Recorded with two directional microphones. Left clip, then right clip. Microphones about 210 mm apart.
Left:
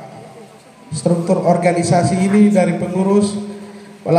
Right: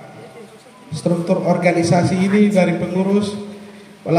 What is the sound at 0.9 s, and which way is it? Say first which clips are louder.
A man's voice: left 2 dB; 20° right (ahead or behind).